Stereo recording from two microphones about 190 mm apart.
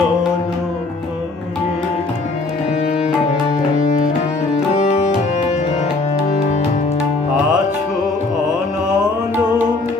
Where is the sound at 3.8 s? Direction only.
40° left (ahead or behind).